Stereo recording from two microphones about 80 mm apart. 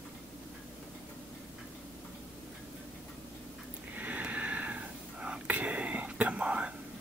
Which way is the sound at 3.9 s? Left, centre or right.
Right.